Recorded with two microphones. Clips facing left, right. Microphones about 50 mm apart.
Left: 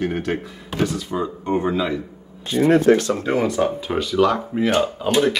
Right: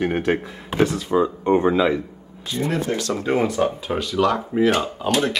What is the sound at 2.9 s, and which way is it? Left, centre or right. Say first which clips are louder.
Speech: left 10 dB; left.